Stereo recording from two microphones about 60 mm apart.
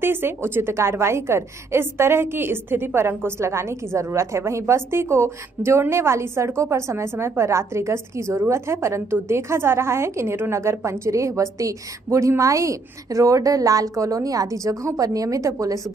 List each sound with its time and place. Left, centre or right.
0.0 s a woman's voice: right